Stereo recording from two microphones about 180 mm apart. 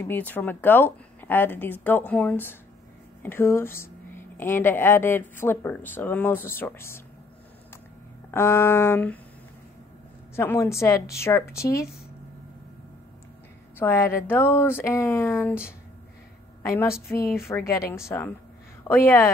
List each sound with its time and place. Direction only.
0.0 s speech: 10° left (ahead or behind)
8.3 s speech: 15° left (ahead or behind)
10.3 s speech: 15° left (ahead or behind)
13.7 s speech: 15° left (ahead or behind)
16.6 s speech: 15° left (ahead or behind)